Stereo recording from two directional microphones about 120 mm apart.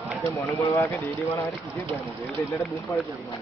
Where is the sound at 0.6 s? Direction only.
25° left (ahead or behind).